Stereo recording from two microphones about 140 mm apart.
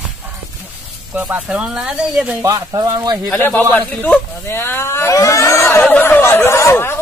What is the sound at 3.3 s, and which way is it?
Speech, 15° left (ahead or behind).